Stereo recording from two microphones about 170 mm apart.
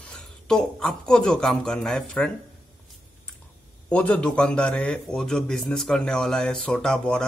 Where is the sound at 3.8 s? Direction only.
5° left (ahead or behind).